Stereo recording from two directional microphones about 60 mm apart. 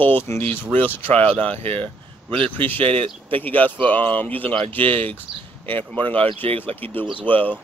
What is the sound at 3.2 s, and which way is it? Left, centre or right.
Speech, left.